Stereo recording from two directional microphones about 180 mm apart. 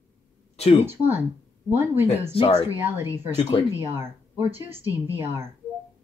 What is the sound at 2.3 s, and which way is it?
Speech, 30° left (ahead or behind).